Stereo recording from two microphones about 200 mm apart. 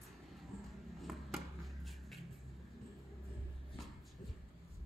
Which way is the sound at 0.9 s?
Centre (ahead or behind).